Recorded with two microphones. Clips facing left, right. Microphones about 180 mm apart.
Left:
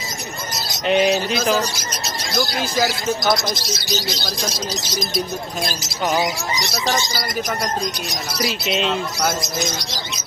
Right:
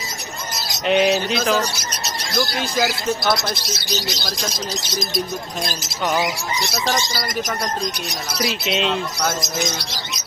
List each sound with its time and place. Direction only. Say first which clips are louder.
0.8 s speech: even; centre (ahead or behind)
6.9 s speech: left 1 dB; centre (ahead or behind)
8.5 s speech: even; centre (ahead or behind)